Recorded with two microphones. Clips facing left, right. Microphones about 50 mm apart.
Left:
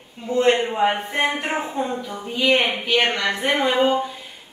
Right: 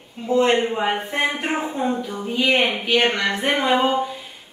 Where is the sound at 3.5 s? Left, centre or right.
Right.